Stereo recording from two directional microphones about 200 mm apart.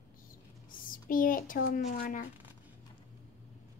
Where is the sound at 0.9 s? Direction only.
45° left (ahead or behind).